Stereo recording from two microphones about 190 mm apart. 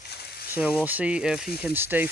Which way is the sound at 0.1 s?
55° left (ahead or behind).